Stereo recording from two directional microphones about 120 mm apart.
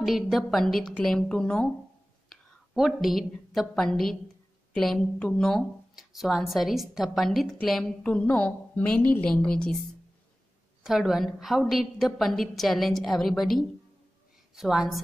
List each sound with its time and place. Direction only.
0.0 s a woman's voice: centre (ahead or behind)
10.8 s speech: 5° right (ahead or behind)